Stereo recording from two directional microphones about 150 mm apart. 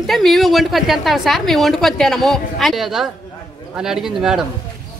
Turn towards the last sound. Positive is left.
turn(degrees=-5)  # may be behind; listen again after turning